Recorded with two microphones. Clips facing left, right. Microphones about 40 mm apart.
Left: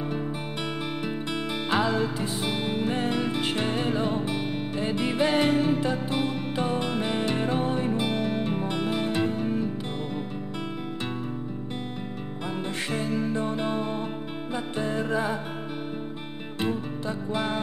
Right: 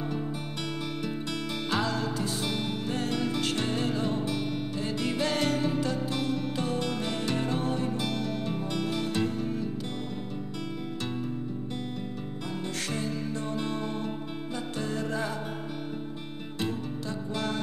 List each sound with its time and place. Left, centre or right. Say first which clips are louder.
1.0 s music: left 3 dB; left
12.4 s music: left 4 dB; left
17.3 s music: left 4 dB; left